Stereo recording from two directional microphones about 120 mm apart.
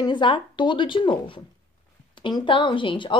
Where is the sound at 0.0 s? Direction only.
40° left (ahead or behind).